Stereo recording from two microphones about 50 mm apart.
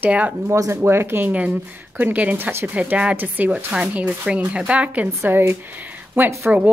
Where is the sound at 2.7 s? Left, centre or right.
Right.